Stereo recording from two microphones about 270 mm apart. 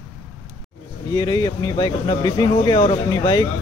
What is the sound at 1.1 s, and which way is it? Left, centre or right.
Speech, centre.